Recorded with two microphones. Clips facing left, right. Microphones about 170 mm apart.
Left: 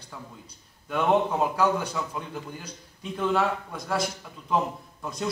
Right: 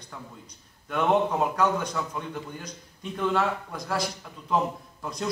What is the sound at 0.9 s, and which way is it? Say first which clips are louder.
A man's voice: even; centre (ahead or behind).